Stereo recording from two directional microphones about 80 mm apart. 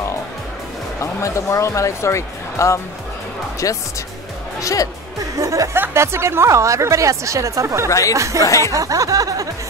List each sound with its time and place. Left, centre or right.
1.2 s speech: left
5.4 s speech: right
8.5 s speech: left
8.7 s speech: right